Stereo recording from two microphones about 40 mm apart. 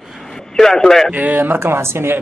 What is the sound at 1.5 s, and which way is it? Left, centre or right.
Speech, right.